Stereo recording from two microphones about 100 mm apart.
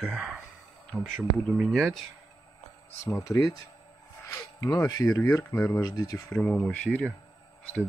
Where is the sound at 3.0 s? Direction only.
30° left (ahead or behind).